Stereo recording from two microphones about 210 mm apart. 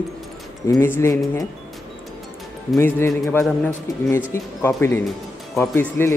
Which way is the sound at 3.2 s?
Centre (ahead or behind).